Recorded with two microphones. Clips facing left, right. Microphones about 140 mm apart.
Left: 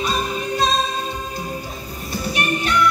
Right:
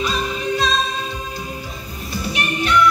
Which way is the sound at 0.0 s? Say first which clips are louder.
Even; 45° left (ahead or behind).